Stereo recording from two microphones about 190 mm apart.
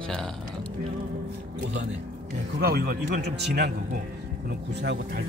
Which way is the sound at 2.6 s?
55° right (ahead or behind).